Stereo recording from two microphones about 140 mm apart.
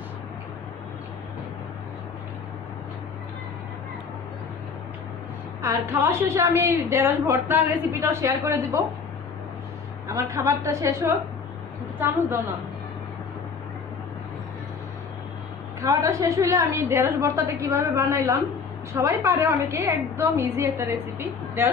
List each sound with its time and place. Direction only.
5.6 s a woman's voice: 20° right (ahead or behind)
10.0 s a woman's voice: 25° right (ahead or behind)
15.8 s a woman's voice: 25° right (ahead or behind)